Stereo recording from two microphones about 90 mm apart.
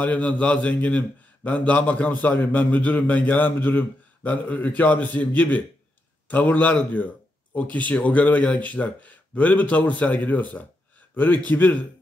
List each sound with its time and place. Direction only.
0.0 s a man's voice: 15° left (ahead or behind)